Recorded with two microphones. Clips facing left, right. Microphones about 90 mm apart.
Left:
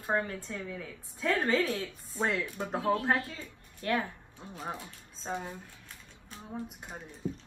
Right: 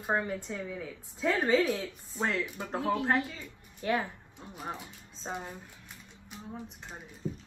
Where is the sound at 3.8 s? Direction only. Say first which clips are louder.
Right 1 dB; 15° right (ahead or behind).